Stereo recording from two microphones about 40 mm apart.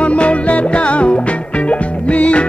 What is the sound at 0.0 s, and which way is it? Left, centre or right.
Music, left.